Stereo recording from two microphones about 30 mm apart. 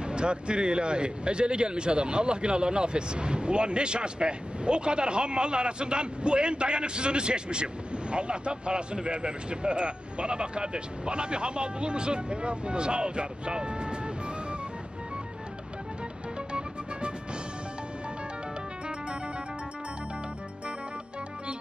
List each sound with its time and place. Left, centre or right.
0.0 s speech: right
16.3 s music: right